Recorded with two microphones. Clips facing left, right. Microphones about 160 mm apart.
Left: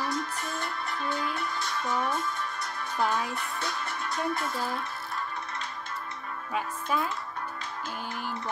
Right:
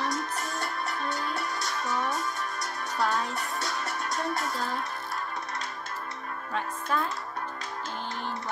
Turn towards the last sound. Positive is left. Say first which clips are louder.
# even
turn(degrees=10)  # may be behind; listen again after turning